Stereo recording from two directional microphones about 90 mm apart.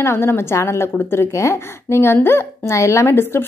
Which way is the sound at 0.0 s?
25° left (ahead or behind).